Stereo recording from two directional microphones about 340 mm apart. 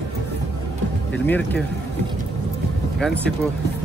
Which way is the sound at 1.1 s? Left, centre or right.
Centre.